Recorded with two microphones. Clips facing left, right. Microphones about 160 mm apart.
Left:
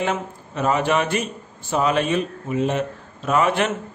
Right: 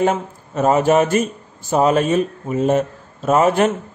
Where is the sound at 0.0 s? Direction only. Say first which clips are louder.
Right 6 dB; 45° right (ahead or behind).